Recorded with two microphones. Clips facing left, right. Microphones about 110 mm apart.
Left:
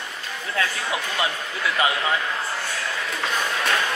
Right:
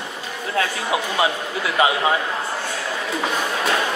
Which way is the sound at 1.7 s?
25° right (ahead or behind).